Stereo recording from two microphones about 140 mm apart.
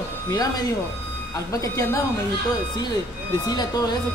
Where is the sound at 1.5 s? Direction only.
25° left (ahead or behind).